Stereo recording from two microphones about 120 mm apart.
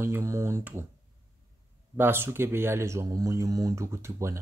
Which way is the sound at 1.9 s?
20° right (ahead or behind).